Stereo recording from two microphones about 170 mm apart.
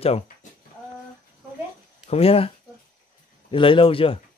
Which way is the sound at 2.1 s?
35° left (ahead or behind).